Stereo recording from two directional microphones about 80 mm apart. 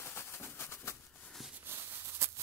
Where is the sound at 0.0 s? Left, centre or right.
Left.